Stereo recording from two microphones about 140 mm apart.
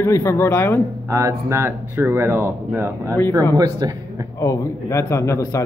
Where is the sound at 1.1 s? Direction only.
20° right (ahead or behind).